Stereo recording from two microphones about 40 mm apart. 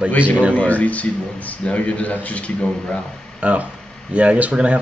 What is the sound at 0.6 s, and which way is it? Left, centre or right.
A man's voice, left.